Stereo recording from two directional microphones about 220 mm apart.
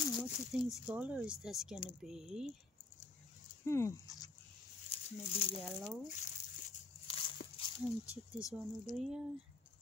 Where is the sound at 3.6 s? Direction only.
10° left (ahead or behind).